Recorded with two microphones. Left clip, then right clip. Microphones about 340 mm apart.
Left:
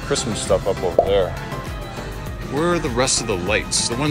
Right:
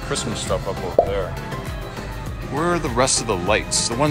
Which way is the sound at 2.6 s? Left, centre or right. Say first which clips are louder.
Even; centre.